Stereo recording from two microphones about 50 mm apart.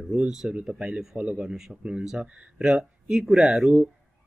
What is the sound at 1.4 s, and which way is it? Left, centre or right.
Speech, centre.